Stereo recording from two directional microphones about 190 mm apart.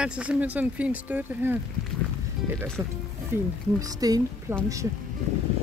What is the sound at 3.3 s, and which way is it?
Speech, 15° right (ahead or behind).